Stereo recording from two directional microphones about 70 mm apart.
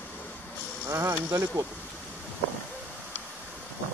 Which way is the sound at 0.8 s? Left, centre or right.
Right.